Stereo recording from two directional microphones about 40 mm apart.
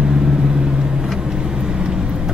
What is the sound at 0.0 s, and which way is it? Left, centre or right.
Vehicle, centre.